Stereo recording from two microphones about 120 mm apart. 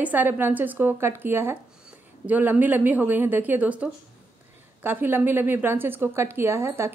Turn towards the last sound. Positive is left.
turn(degrees=-20)  # may be behind; listen again after turning